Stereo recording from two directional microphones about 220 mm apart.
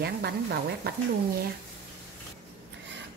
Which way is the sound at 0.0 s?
45° right (ahead or behind).